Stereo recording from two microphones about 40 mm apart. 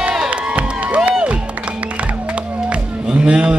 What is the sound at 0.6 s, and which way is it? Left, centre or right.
Crowd, right.